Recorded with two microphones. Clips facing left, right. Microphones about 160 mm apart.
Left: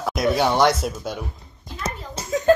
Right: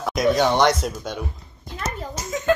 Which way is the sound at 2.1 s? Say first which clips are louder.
Left 6 dB; 35° left (ahead or behind).